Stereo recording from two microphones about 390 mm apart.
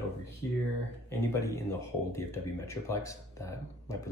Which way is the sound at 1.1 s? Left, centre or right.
Centre.